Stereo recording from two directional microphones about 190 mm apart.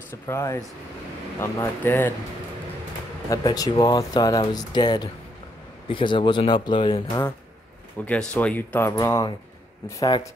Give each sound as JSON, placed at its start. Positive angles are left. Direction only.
{"t": 0.3, "sound": "speech", "side_deg": 15}
{"t": 3.3, "sound": "speech", "side_deg": 20}
{"t": 8.0, "sound": "speech", "side_deg": 5}